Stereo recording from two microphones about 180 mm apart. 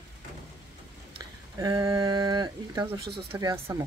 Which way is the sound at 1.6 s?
20° right (ahead or behind).